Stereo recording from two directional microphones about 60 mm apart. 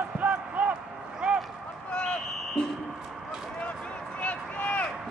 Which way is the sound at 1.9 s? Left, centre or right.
Centre.